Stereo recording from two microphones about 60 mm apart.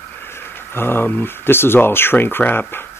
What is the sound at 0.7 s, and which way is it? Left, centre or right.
Speech, left.